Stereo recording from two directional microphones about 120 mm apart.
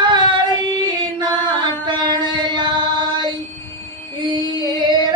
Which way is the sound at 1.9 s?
40° right (ahead or behind).